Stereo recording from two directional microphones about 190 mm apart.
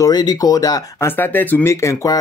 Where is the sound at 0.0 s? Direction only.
20° left (ahead or behind).